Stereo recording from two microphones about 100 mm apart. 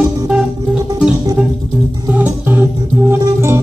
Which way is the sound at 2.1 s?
15° right (ahead or behind).